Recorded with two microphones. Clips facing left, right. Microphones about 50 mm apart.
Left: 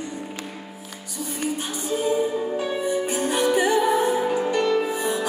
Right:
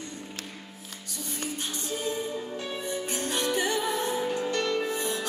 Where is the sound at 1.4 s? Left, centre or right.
Centre.